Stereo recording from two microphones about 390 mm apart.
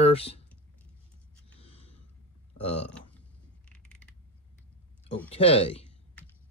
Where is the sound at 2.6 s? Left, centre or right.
Centre.